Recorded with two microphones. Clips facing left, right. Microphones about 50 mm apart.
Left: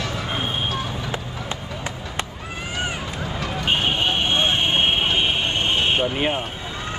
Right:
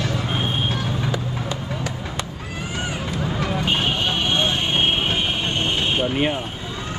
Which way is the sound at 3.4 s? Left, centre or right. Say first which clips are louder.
Right 3 dB; right.